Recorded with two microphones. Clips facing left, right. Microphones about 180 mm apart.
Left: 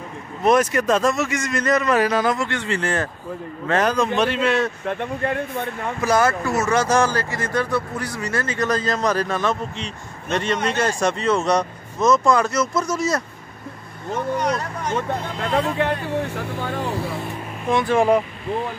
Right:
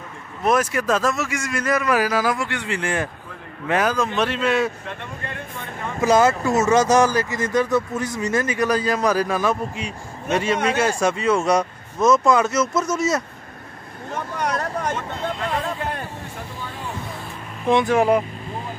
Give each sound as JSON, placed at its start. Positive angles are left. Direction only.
{"t": 0.4, "sound": "a man's voice", "side_deg": -5}
{"t": 4.8, "sound": "speech", "side_deg": 55}
{"t": 5.9, "sound": "a man's voice", "side_deg": -20}
{"t": 14.4, "sound": "speech", "side_deg": -50}
{"t": 15.5, "sound": "speech", "side_deg": 70}
{"t": 16.9, "sound": "vehicle", "side_deg": 30}
{"t": 17.6, "sound": "speech", "side_deg": -20}
{"t": 17.9, "sound": "speech", "side_deg": -10}